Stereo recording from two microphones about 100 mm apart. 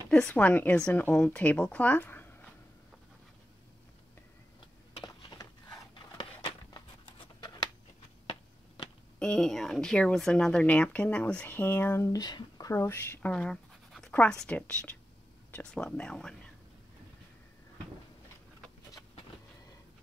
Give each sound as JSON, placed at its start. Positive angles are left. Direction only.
{"t": 0.1, "sound": "speech", "side_deg": 15}
{"t": 5.0, "sound": "a sound", "side_deg": 40}
{"t": 7.1, "sound": "writing", "side_deg": 60}
{"t": 9.2, "sound": "speech", "side_deg": 5}
{"t": 12.1, "sound": "speech", "side_deg": 40}
{"t": 12.7, "sound": "speech", "side_deg": 25}